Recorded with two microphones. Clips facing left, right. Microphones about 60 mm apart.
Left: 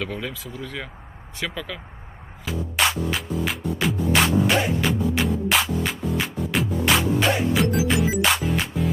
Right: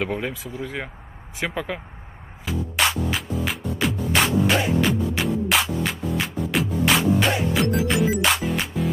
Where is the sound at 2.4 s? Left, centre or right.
Centre.